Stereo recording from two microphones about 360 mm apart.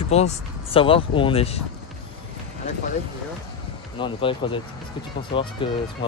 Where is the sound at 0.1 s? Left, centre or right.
Centre.